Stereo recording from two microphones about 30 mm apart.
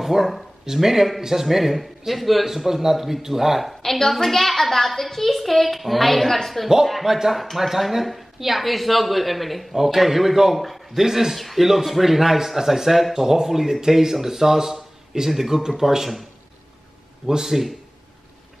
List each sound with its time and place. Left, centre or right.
0.0 s a woman's voice: centre
3.8 s a woman's voice: centre
17.3 s speech: centre